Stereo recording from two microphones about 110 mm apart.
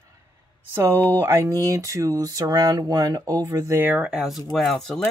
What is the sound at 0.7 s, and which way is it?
Speech, 25° right (ahead or behind).